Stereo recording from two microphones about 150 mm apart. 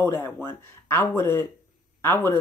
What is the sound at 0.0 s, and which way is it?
Speech, 15° left (ahead or behind).